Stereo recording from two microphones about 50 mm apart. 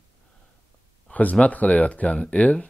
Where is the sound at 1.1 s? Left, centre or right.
Left.